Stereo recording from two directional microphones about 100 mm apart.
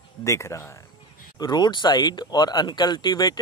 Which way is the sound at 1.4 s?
45° left (ahead or behind).